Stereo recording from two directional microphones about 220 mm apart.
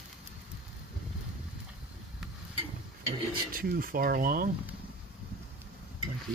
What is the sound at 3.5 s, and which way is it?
Speech, 40° right (ahead or behind).